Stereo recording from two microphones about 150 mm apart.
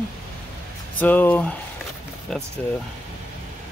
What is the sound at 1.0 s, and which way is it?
Speech, 10° left (ahead or behind).